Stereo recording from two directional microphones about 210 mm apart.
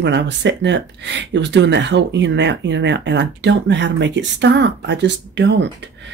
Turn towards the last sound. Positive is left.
turn(degrees=-55)  # may be behind; listen again after turning